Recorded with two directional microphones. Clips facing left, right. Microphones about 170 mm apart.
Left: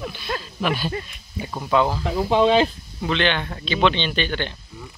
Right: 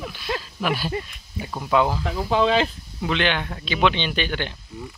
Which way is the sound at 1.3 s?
Centre (ahead or behind).